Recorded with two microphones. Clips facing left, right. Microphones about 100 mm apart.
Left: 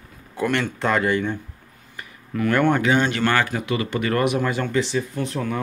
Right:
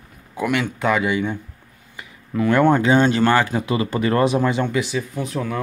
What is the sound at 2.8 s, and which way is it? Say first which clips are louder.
Speech: right 4 dB; 30° right (ahead or behind).